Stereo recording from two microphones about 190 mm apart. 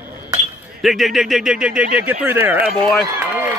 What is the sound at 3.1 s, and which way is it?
Run, 10° right (ahead or behind).